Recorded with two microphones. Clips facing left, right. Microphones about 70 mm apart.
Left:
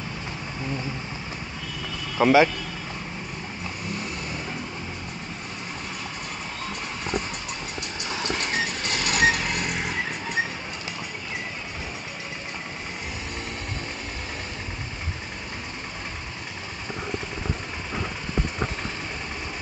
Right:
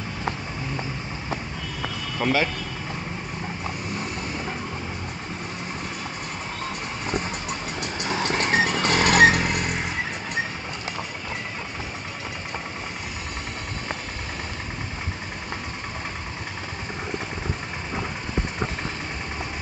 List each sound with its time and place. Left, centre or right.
2.1 s speech: centre
8.0 s vehicle: right
9.5 s a sound: centre